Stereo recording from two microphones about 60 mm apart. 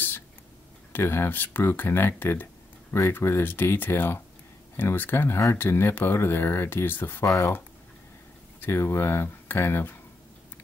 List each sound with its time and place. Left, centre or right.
0.9 s speech: left